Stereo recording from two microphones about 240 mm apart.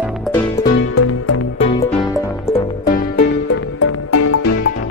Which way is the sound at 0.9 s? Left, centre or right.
Left.